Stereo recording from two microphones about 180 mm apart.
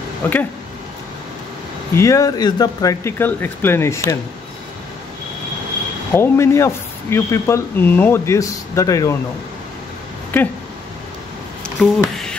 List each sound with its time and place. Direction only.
0.2 s speech: 10° left (ahead or behind)
2.0 s speech: 15° left (ahead or behind)
6.1 s speech: 15° left (ahead or behind)
11.8 s a sound: 5° left (ahead or behind)